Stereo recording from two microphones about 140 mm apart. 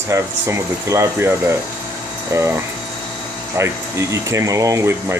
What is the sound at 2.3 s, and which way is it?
Speech, 20° right (ahead or behind).